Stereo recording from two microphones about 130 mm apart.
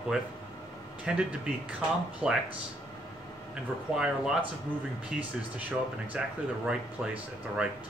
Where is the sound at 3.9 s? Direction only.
5° right (ahead or behind).